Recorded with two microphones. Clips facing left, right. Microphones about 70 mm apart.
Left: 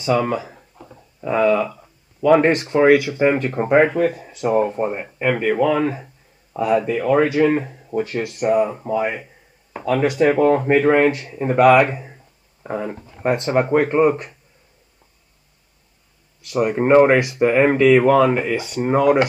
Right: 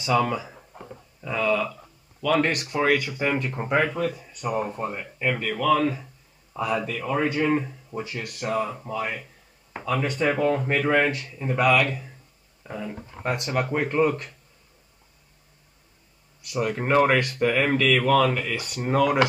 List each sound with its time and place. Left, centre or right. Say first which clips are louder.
0.1 s speech: left 4 dB; centre
0.4 s a sound: left 5 dB; centre
1.2 s speech: left 7 dB; left
2.9 s speech: left 9 dB; centre
3.3 s speech: left 7 dB; left
5.2 s speech: left 7 dB; centre
7.1 s speech: left 7 dB; left
8.5 s speech: left 9 dB; left
10.4 s speech: left 7 dB; left
10.7 s speech: left 7 dB; left
16.5 s speech: left 8 dB; left